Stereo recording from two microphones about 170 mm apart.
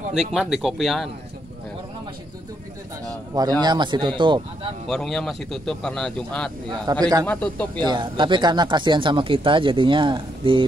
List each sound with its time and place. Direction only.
0.1 s a man's voice: centre (ahead or behind)
3.3 s speech: 25° right (ahead or behind)
4.8 s a man's voice: 5° left (ahead or behind)
6.9 s speech: 25° right (ahead or behind)
7.2 s speech: 10° left (ahead or behind)
7.8 s speech: 30° right (ahead or behind)